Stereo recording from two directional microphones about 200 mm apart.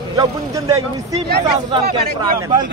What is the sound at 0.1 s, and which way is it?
Speech, 20° right (ahead or behind).